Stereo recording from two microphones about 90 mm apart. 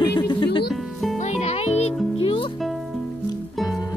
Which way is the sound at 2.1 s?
75° left (ahead or behind).